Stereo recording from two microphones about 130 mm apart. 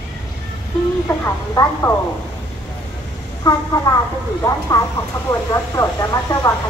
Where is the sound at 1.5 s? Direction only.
20° left (ahead or behind).